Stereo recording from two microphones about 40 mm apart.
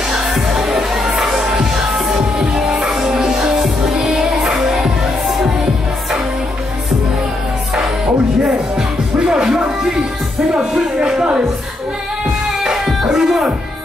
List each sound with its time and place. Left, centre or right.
0.1 s music: centre
8.7 s music: centre
10.5 s speech: centre
12.6 s music: centre